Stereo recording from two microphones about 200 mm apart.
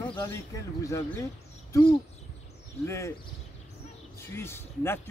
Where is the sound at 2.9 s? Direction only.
15° left (ahead or behind).